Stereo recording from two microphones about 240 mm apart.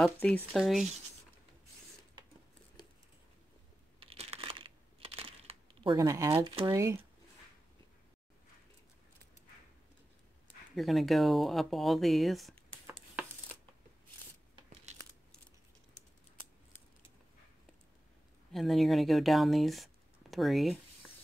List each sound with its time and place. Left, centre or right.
0.0 s speech: centre
4.0 s crumpling: right
5.9 s speech: centre
10.8 s speech: centre
18.5 s speech: centre